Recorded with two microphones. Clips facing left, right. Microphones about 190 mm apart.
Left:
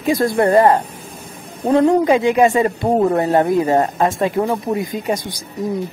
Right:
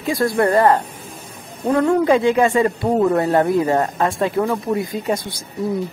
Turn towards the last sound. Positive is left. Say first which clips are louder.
# even
turn(degrees=15)  # may be behind; listen again after turning